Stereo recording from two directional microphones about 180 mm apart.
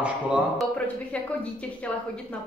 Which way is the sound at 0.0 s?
5° right (ahead or behind).